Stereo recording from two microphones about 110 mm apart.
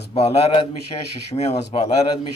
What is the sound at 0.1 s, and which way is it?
Speech, 70° left (ahead or behind).